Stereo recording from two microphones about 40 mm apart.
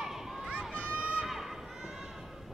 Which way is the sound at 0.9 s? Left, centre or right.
Right.